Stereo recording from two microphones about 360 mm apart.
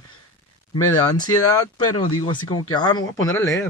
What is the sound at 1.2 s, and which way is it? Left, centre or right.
Mantra, left.